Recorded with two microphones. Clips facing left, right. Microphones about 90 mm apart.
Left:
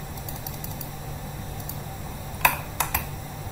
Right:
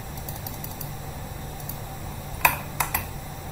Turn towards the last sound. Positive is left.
turn(degrees=65)  # may be behind; listen again after turning